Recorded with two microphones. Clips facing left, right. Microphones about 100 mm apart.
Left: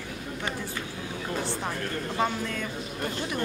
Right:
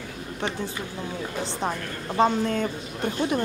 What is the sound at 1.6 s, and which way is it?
Speech, 25° right (ahead or behind).